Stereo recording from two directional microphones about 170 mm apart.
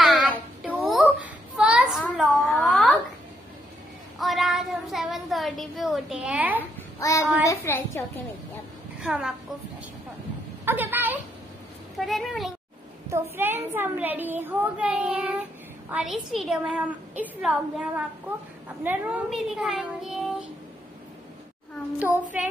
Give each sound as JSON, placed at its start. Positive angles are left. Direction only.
{"t": 0.0, "sound": "child singing", "side_deg": 0}
{"t": 1.2, "sound": "a sound", "side_deg": -5}
{"t": 4.2, "sound": "child singing", "side_deg": 0}
{"t": 7.0, "sound": "child singing", "side_deg": 20}
{"t": 7.4, "sound": "a sound", "side_deg": 15}
{"t": 9.0, "sound": "a child's voice", "side_deg": -5}
{"t": 10.6, "sound": "a sound", "side_deg": -10}
{"t": 12.0, "sound": "a woman's voice", "side_deg": 0}
{"t": 13.4, "sound": "a child's voice", "side_deg": -10}
{"t": 21.9, "sound": "a child's voice", "side_deg": -10}